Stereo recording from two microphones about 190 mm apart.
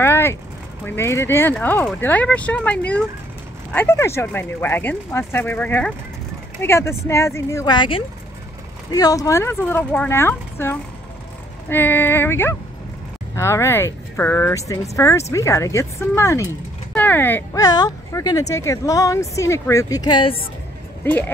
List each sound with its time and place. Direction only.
0.0 s a sound: 15° left (ahead or behind)
0.8 s speech: 15° left (ahead or behind)
21.0 s speech: 10° left (ahead or behind)